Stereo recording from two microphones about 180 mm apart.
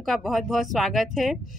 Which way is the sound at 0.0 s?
Centre (ahead or behind).